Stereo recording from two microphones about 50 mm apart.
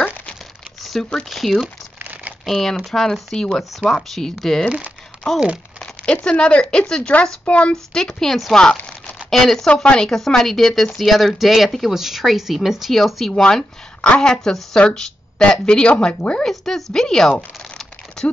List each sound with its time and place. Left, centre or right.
1.0 s speech: centre
6.2 s speech: left
7.7 s speech: centre
13.3 s speech: centre
16.4 s speech: centre